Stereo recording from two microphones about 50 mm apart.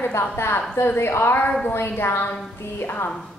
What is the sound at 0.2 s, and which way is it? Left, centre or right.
A woman's voice, left.